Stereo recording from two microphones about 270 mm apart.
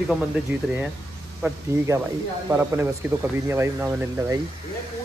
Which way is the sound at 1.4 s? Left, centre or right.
Centre.